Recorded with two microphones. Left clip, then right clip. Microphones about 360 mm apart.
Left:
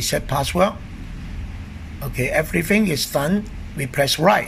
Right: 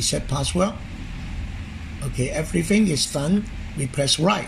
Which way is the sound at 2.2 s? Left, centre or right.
Left.